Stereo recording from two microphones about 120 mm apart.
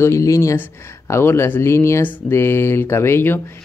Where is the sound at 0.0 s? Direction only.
25° left (ahead or behind).